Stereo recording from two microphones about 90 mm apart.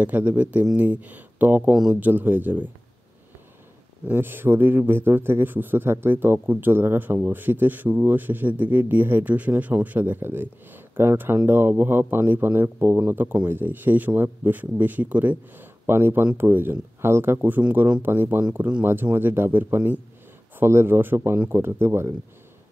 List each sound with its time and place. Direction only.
0.0 s speech: 15° right (ahead or behind)
4.1 s speech: 25° right (ahead or behind)
18.0 s speech: 25° right (ahead or behind)